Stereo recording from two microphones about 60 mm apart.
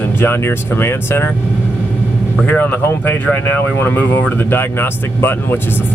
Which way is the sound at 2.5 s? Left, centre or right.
Left.